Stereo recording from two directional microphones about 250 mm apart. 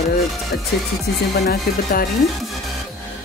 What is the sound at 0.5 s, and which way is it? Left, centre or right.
Speech, left.